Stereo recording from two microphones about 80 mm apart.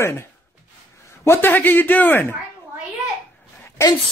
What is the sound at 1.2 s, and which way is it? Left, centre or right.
Speech, left.